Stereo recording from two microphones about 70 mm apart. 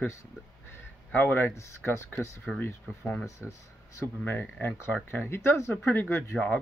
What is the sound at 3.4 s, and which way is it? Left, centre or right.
Speech, left.